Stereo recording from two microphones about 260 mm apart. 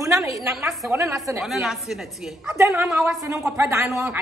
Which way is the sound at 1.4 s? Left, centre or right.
Centre.